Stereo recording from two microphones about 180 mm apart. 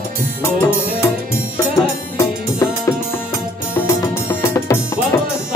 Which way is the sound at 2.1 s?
15° left (ahead or behind).